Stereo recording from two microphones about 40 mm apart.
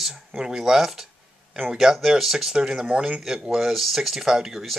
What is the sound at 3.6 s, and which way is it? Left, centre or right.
Speech, centre.